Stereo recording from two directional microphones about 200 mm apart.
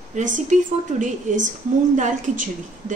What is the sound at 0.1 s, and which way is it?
A woman's voice, 40° right (ahead or behind).